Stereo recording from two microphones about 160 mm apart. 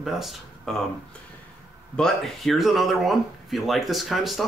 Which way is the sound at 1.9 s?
Centre (ahead or behind).